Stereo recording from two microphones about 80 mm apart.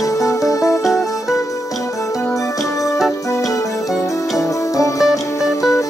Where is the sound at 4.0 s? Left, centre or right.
Left.